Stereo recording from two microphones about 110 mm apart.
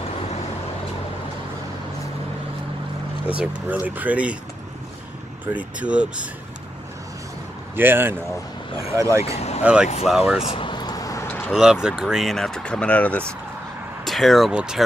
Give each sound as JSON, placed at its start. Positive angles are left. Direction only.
{"t": 3.3, "sound": "speech", "side_deg": -15}
{"t": 5.8, "sound": "speech", "side_deg": -10}
{"t": 7.7, "sound": "speech", "side_deg": -20}
{"t": 8.9, "sound": "speech", "side_deg": -30}
{"t": 9.2, "sound": "speech", "side_deg": 75}
{"t": 9.6, "sound": "speech", "side_deg": -10}
{"t": 10.4, "sound": "speech", "side_deg": 65}
{"t": 10.7, "sound": "vehicle", "side_deg": 40}
{"t": 11.2, "sound": "vehicle", "side_deg": 20}
{"t": 11.5, "sound": "speech", "side_deg": -5}
{"t": 14.0, "sound": "speech", "side_deg": 0}